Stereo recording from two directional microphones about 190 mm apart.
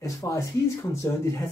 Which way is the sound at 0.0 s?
15° left (ahead or behind).